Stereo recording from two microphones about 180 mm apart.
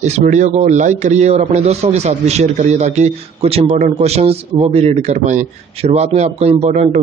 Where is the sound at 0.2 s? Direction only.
40° right (ahead or behind).